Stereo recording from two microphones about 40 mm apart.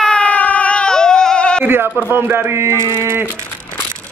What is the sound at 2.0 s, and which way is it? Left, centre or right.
Speech, right.